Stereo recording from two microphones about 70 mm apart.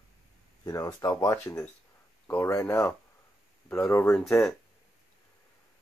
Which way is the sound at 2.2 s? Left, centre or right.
Left.